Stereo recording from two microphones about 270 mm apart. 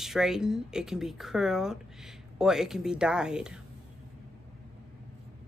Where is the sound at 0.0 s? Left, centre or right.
Centre.